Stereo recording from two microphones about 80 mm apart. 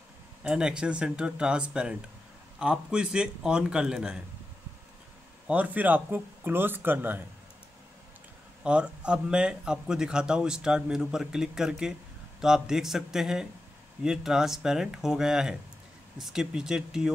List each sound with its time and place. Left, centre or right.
0.4 s speech: centre
5.5 s speech: centre
8.6 s speech: centre